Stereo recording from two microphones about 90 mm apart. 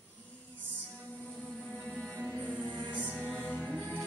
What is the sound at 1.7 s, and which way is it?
Music, 5° left (ahead or behind).